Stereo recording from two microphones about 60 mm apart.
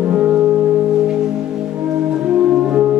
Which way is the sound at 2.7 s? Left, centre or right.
Right.